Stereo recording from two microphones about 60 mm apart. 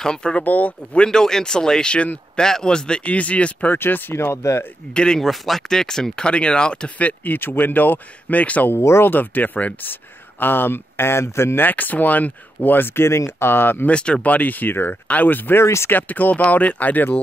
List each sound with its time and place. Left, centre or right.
0.0 s speech: centre
0.4 s speech: left
1.0 s speech: centre
3.7 s speech: left
4.9 s speech: centre
8.7 s speech: left
9.1 s speech: left
13.8 s speech: centre
15.6 s speech: left
15.9 s speech: left